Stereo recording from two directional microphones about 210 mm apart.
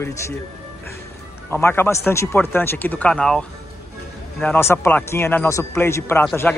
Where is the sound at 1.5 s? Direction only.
10° left (ahead or behind).